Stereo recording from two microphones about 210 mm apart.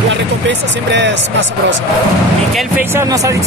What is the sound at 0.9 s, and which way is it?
Speech, 60° right (ahead or behind).